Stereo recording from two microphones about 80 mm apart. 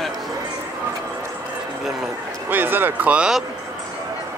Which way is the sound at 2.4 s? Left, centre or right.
Right.